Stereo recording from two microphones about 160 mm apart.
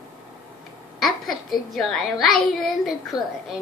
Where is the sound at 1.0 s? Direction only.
Centre (ahead or behind).